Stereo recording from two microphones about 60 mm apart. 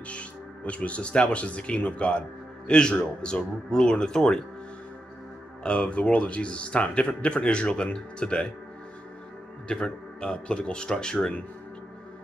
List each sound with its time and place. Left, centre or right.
0.1 s speech: left
5.6 s speech: centre
9.7 s speech: centre